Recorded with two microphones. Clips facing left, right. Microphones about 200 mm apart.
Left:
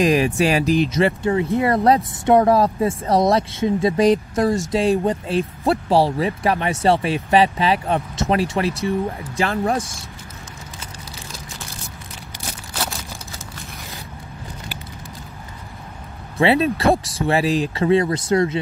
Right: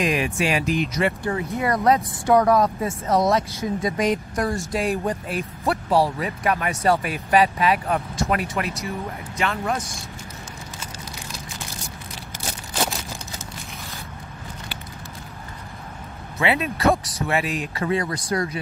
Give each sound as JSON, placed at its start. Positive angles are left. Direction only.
{"t": 0.0, "sound": "speech", "side_deg": 35}
{"t": 16.3, "sound": "speech", "side_deg": 35}